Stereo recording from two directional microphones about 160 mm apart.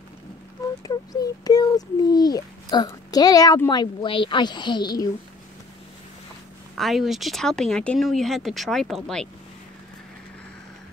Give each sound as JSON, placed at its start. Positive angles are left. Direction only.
{"t": 0.8, "sound": "a child's voice", "side_deg": 25}
{"t": 6.8, "sound": "speech", "side_deg": 0}